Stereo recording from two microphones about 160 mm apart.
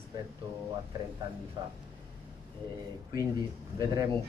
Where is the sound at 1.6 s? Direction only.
25° right (ahead or behind).